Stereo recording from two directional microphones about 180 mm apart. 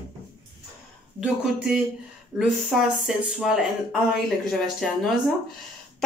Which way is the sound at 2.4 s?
Centre (ahead or behind).